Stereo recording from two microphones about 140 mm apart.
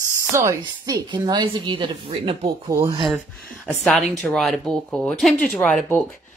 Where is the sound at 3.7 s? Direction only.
Centre (ahead or behind).